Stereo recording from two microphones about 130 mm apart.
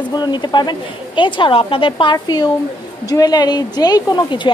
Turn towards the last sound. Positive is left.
turn(degrees=35)  # may be behind; listen again after turning